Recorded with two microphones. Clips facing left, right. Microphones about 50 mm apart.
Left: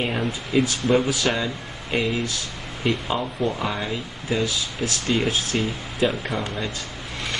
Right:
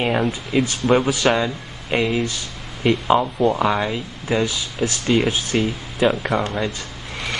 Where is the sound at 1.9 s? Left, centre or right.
Right.